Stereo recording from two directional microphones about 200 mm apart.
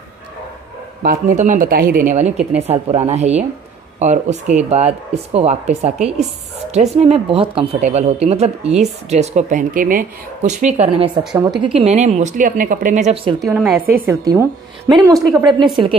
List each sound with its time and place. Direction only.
1.0 s speech: 40° right (ahead or behind)
13.4 s a woman's voice: centre (ahead or behind)
13.9 s a woman's voice: 15° right (ahead or behind)